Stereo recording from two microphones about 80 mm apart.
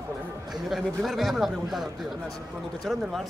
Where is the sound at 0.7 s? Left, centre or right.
Centre.